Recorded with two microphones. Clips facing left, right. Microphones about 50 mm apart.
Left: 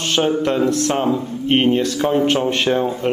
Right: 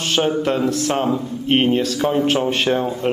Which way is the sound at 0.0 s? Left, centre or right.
Centre.